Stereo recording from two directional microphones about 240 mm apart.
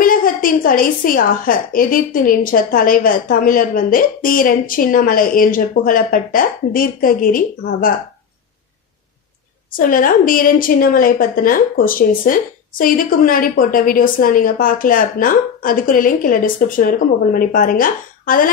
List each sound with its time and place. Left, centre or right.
0.0 s a woman's voice: left
9.8 s a woman's voice: left